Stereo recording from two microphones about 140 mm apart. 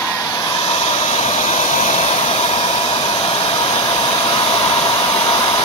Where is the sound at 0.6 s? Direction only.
45° left (ahead or behind).